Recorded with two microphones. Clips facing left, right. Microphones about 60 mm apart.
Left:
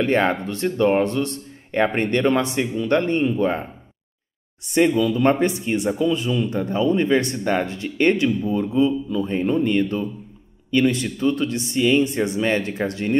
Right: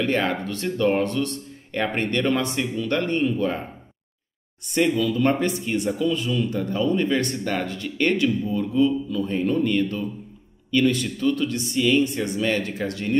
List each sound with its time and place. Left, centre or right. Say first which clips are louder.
0.0 s speech: left 4 dB; left
5.0 s speech: left 3 dB; left